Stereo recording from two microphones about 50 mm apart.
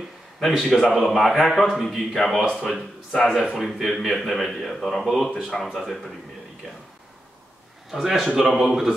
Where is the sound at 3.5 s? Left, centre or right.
Centre.